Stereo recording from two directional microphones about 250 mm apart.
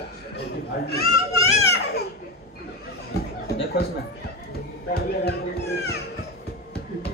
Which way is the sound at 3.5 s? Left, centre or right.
Left.